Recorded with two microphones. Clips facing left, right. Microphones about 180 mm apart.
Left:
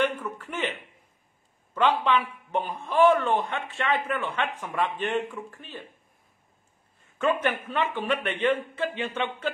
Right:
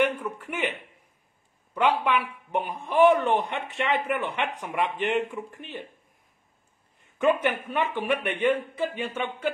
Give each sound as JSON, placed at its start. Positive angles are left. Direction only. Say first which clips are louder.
{"t": 0.0, "sound": "a man's voice", "louder": "right 2 dB", "side_deg": -10}
{"t": 7.2, "sound": "a man's voice", "louder": "right 2 dB", "side_deg": -15}